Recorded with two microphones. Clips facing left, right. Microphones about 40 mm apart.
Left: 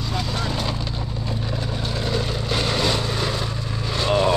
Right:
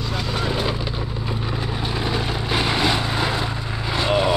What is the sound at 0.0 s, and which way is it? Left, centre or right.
Vehicle, centre.